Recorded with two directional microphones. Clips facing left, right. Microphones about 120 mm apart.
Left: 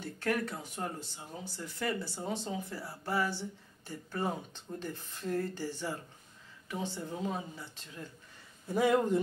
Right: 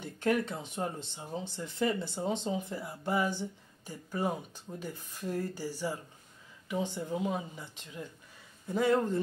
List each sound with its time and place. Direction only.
0.0 s speech: 20° right (ahead or behind)
8.7 s speech: 10° left (ahead or behind)